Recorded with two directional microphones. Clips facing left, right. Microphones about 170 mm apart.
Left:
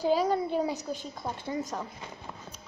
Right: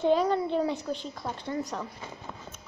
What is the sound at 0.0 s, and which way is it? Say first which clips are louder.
A woman's voice: right 2 dB; 5° left (ahead or behind).